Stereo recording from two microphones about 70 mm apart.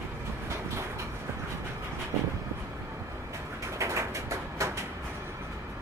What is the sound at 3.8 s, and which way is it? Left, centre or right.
Bird, right.